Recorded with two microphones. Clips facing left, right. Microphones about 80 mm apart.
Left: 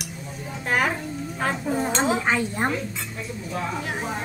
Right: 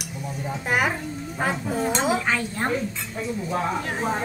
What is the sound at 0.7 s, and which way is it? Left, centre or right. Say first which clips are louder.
Music: left 1 dB; centre.